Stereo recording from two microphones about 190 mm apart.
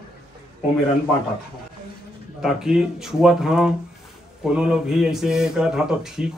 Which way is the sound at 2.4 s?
5° right (ahead or behind).